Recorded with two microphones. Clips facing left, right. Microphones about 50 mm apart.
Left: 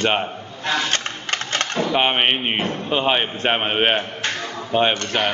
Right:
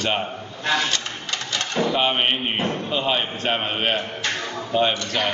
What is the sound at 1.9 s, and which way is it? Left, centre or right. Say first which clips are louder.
A man's voice: left 5 dB; left.